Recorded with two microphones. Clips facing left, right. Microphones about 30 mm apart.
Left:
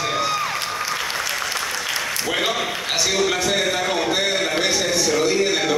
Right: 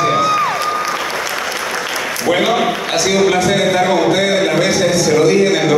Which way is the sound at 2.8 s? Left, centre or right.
Centre.